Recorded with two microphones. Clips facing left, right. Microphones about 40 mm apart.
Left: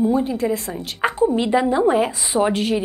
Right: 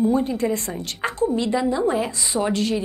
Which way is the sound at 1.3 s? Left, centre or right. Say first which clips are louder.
Left 4 dB; left.